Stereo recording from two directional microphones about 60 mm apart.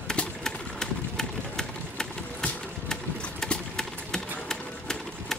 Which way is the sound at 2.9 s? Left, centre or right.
Centre.